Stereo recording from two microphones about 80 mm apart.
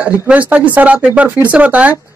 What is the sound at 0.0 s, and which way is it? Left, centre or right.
A man's voice, centre.